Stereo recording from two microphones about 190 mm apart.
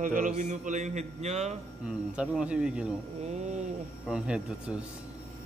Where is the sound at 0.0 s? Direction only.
45° right (ahead or behind).